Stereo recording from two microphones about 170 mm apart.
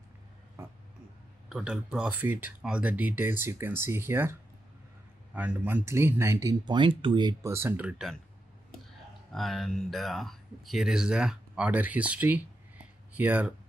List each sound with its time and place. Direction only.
0.6 s a sound: 15° right (ahead or behind)
1.5 s speech: 5° right (ahead or behind)
6.6 s speech: 25° right (ahead or behind)
7.5 s speech: 15° right (ahead or behind)
9.3 s speech: centre (ahead or behind)